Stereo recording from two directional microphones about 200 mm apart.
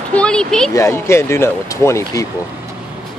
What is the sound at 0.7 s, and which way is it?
Speech, 15° left (ahead or behind).